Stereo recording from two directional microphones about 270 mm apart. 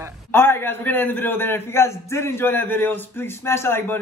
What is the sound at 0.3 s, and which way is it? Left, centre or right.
Speech, centre.